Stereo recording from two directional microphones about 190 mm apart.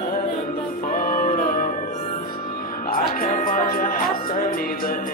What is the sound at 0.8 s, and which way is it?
Music, 45° left (ahead or behind).